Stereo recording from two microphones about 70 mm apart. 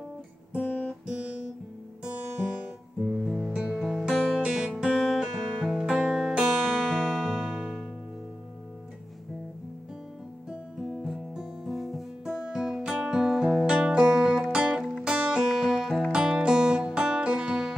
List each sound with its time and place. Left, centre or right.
0.6 s guitar: left
1.0 s guitar: centre
3.0 s music: centre
4.9 s music: centre
10.8 s music: centre